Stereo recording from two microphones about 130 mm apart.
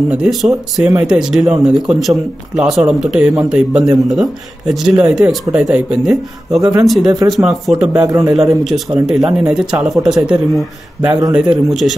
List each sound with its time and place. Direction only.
0.1 s speech: 5° right (ahead or behind)
8.1 s a man's voice: 25° right (ahead or behind)
8.4 s speech: centre (ahead or behind)